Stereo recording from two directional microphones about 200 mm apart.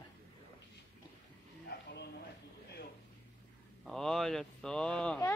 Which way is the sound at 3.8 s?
Centre (ahead or behind).